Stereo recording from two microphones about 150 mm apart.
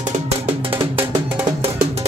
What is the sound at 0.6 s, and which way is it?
Music, 35° right (ahead or behind).